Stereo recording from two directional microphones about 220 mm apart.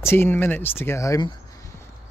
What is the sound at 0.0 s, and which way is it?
Speech, 10° left (ahead or behind).